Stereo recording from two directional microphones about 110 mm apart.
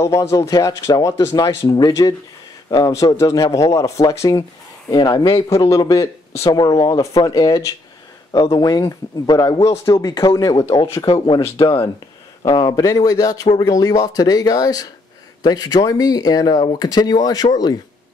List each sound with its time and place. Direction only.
0.0 s speech: 25° left (ahead or behind)
4.9 s speech: 40° left (ahead or behind)
5.5 s speech: 30° left (ahead or behind)
11.1 s speech: 50° left (ahead or behind)
12.4 s speech: 40° left (ahead or behind)